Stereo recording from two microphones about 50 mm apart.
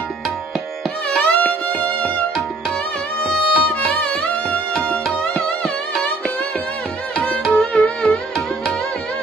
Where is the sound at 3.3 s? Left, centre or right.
Centre.